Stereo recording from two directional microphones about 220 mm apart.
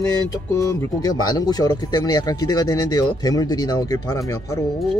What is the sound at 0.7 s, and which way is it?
Speech, 15° left (ahead or behind).